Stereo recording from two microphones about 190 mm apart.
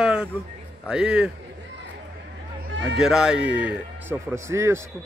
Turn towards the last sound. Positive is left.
turn(degrees=-15)  # may be behind; listen again after turning